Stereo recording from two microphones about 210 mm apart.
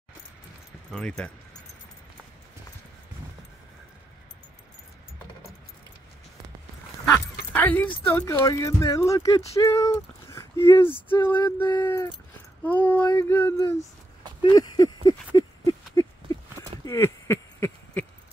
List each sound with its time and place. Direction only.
0.9 s speech: 5° left (ahead or behind)
7.5 s keys jangling: 10° left (ahead or behind)
8.1 s speech: 15° left (ahead or behind)
9.6 s a sound: 15° left (ahead or behind)
11.0 s speech: 10° left (ahead or behind)
11.3 s a sound: 20° left (ahead or behind)
12.6 s speech: 5° left (ahead or behind)
13.0 s speech: 20° left (ahead or behind)
14.4 s a sound: 20° left (ahead or behind)